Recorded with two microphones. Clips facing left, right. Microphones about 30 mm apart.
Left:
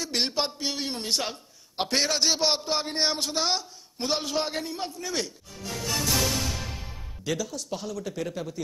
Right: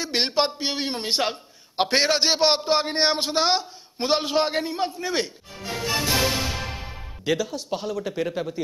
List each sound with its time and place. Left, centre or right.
0.0 s a man's voice: right